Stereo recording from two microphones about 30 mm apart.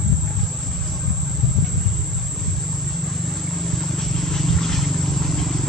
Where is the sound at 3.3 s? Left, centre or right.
Centre.